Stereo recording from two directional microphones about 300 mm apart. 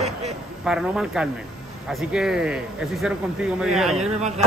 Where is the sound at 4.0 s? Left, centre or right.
Right.